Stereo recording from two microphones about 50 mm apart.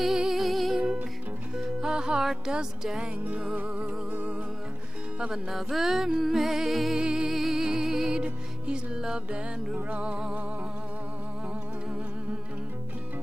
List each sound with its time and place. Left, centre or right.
0.0 s music: centre
1.6 s music: centre
3.3 s music: right
5.3 s music: centre
7.0 s music: centre
9.8 s music: right